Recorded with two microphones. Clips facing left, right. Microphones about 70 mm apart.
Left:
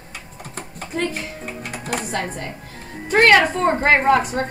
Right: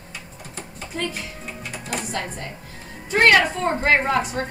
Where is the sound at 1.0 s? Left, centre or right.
Left.